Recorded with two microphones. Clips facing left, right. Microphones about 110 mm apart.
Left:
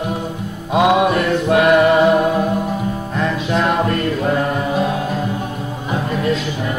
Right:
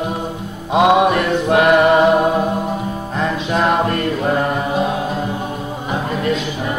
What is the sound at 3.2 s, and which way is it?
Mantra, 15° right (ahead or behind).